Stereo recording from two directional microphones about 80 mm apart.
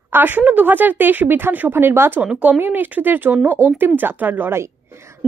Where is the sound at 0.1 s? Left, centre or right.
Right.